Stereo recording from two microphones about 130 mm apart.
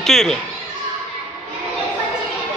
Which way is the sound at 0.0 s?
5° left (ahead or behind).